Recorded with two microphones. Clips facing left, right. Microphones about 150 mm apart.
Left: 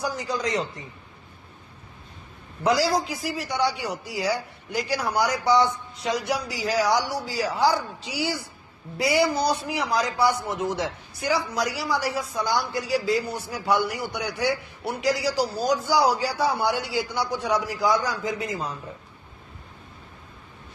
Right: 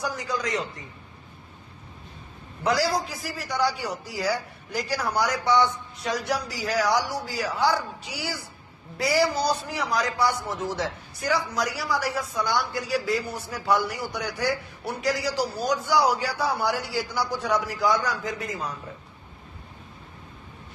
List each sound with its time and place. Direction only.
0.0 s a man's voice: 25° left (ahead or behind)
2.6 s a man's voice: 25° left (ahead or behind)